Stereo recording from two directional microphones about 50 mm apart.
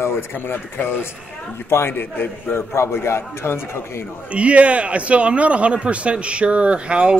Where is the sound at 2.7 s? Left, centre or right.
Left.